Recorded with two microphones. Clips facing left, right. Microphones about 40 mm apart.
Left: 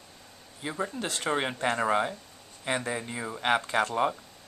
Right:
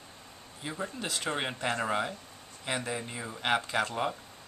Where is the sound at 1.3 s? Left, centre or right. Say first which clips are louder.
Left 5 dB; centre.